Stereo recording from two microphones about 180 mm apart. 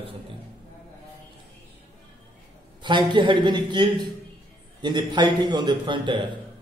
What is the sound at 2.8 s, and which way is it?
Speech, 25° right (ahead or behind).